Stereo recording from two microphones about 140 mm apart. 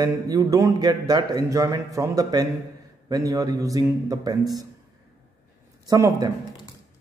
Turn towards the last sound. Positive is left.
turn(degrees=-25)  # may be behind; listen again after turning